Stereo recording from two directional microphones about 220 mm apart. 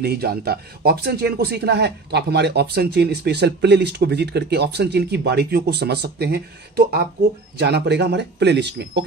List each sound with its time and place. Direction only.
0.0 s speech: 45° right (ahead or behind)